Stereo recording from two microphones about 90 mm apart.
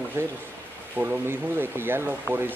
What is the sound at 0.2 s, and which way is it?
Speech, 30° right (ahead or behind).